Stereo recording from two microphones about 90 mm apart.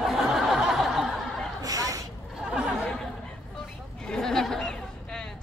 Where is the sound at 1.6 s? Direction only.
45° right (ahead or behind).